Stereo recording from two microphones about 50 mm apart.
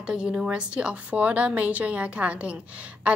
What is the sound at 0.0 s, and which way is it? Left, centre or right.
A woman's voice, centre.